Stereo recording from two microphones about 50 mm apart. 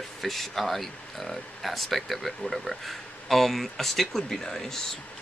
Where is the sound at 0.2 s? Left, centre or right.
Centre.